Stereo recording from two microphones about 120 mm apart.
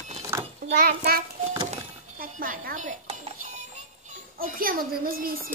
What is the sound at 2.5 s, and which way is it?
Speech, 90° right.